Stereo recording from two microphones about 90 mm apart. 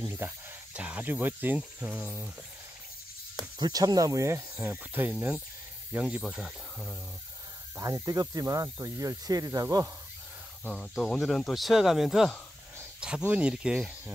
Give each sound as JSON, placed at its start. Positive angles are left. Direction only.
{"t": 0.2, "sound": "speech", "side_deg": -25}
{"t": 3.5, "sound": "speech", "side_deg": -50}
{"t": 7.7, "sound": "speech", "side_deg": -40}
{"t": 10.7, "sound": "speech", "side_deg": 5}
{"t": 13.2, "sound": "speech", "side_deg": -15}